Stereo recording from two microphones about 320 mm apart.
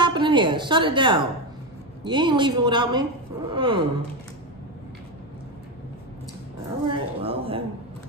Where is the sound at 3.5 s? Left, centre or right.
Centre.